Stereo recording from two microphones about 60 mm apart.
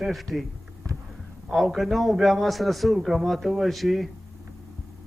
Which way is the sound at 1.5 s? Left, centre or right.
Centre.